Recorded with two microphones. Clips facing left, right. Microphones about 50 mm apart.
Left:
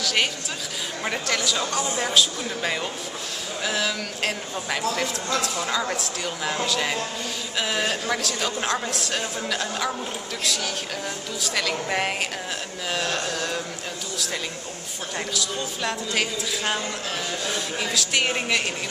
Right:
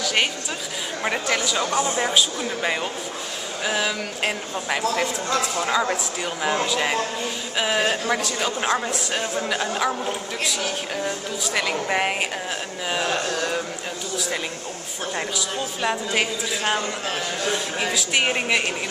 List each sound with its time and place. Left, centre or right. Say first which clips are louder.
0.0 s speech: right 2 dB; centre
8.2 s speech: right 2 dB; centre
17.9 s speech: right 1 dB; centre